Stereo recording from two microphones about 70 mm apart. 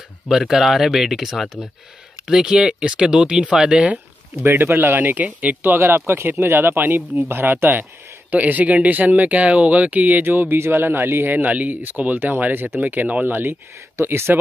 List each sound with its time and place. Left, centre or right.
0.3 s speech: centre
4.5 s speech: right
5.8 s speech: right